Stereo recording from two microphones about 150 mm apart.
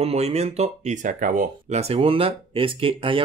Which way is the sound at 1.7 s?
45° right (ahead or behind).